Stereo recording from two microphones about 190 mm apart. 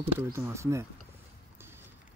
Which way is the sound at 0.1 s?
15° right (ahead or behind).